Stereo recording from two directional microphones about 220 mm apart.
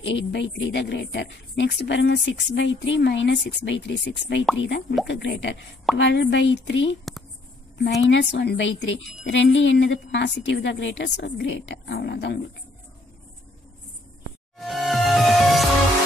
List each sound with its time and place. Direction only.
0.0 s a woman's voice: 55° left (ahead or behind)
8.1 s a woman's voice: 55° left (ahead or behind)
14.6 s music: centre (ahead or behind)